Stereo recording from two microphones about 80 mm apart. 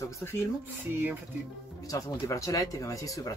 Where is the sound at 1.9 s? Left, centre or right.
Left.